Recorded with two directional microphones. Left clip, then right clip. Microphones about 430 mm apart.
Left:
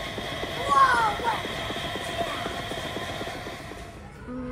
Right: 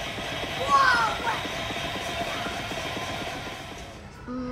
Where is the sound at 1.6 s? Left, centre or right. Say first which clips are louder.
Even; centre.